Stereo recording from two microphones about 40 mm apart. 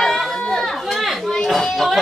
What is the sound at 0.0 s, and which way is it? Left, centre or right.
Chatter, centre.